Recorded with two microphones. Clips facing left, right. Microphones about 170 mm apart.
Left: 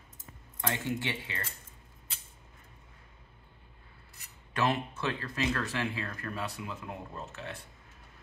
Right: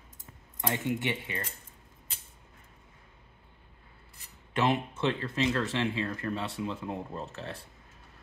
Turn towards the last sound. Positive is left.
turn(degrees=-30)  # may be behind; listen again after turning